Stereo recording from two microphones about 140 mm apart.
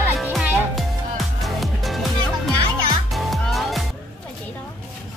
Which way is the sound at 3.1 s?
Centre (ahead or behind).